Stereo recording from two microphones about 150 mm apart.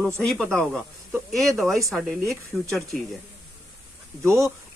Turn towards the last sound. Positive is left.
turn(degrees=-20)  # may be behind; listen again after turning